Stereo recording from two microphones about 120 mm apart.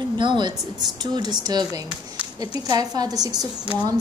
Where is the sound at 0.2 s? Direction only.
40° right (ahead or behind).